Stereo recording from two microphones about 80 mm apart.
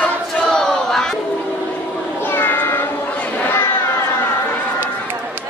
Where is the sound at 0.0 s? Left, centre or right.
Centre.